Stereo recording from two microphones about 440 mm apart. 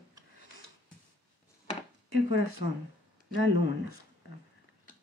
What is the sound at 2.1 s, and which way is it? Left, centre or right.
Speech, right.